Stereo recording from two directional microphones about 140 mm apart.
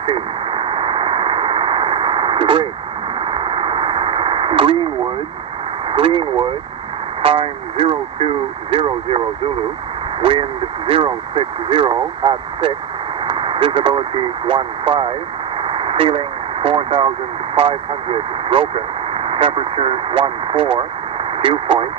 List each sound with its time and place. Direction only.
0.0 s radio: 40° right (ahead or behind)
5.9 s speech: 40° right (ahead or behind)
10.2 s speech: 40° right (ahead or behind)
15.6 s radio: 40° right (ahead or behind)
17.6 s speech: 40° right (ahead or behind)